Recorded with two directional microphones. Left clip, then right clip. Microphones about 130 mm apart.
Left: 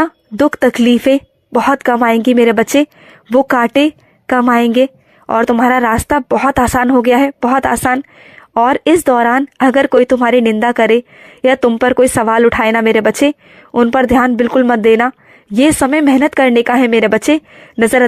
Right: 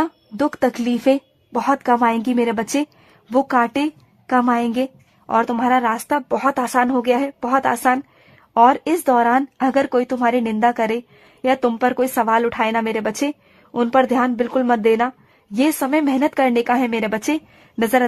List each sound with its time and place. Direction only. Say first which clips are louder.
0.0 s speech: left 8 dB; 25° left (ahead or behind)